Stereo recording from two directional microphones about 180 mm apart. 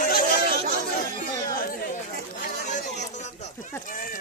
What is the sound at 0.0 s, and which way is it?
Chatter, 50° left (ahead or behind).